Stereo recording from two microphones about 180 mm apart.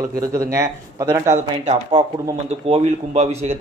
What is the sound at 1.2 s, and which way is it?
Speech, 40° right (ahead or behind).